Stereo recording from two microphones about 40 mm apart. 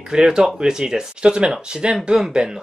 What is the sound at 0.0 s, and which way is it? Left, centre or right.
Speech, centre.